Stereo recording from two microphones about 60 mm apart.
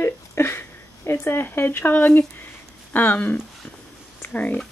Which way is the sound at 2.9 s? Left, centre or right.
Left.